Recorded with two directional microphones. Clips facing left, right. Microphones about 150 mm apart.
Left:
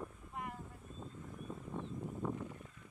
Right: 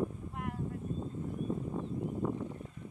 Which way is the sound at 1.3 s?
50° right (ahead or behind).